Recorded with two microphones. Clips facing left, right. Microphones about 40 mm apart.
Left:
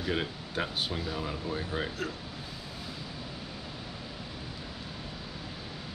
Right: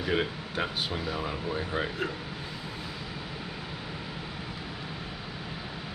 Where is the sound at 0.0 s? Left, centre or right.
Centre.